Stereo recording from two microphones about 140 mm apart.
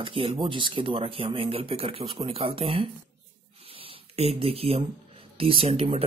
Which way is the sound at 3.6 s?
40° right (ahead or behind).